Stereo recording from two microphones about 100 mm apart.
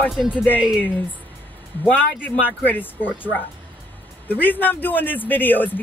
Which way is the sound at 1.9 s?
20° left (ahead or behind).